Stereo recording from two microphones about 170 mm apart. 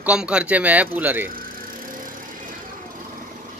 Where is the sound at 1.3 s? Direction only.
55° right (ahead or behind).